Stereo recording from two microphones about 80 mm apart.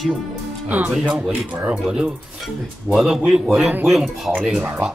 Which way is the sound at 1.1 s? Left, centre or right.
Centre.